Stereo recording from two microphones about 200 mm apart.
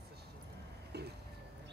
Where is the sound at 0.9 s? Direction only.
55° right (ahead or behind).